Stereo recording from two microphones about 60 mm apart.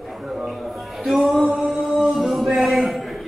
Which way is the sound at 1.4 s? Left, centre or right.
Centre.